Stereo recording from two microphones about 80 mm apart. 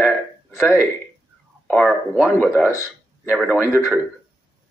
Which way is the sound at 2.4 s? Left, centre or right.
Centre.